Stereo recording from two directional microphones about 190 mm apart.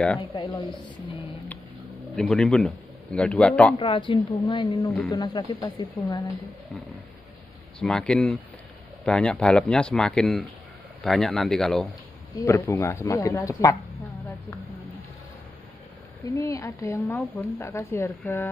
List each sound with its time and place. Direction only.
0.3 s speech: 20° left (ahead or behind)
2.1 s speech: 5° left (ahead or behind)
3.7 s speech: 25° left (ahead or behind)
7.8 s speech: 5° left (ahead or behind)
12.4 s a woman's voice: 15° left (ahead or behind)
16.3 s a woman's voice: 15° left (ahead or behind)